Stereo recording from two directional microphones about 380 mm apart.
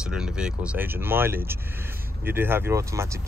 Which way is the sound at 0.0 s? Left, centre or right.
Centre.